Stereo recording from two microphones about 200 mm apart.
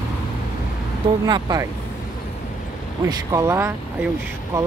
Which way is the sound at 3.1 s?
15° right (ahead or behind).